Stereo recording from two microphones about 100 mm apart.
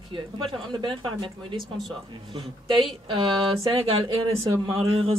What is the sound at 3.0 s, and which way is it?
Speech, 55° right (ahead or behind).